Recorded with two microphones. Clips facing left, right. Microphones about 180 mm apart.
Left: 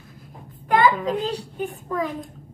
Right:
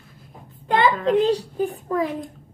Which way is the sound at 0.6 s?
25° right (ahead or behind).